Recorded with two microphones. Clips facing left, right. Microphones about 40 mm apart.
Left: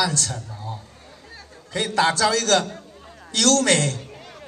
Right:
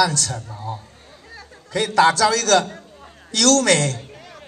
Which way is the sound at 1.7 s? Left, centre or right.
Right.